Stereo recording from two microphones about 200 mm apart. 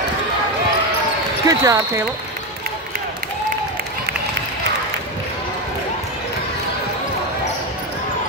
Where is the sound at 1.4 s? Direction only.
15° right (ahead or behind).